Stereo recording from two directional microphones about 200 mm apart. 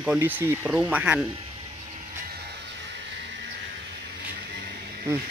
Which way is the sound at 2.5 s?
60° right (ahead or behind).